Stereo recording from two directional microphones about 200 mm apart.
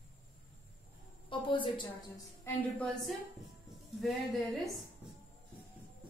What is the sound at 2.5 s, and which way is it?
Speech, 15° left (ahead or behind).